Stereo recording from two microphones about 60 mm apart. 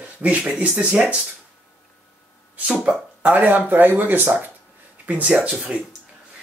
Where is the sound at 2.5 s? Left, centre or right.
Right.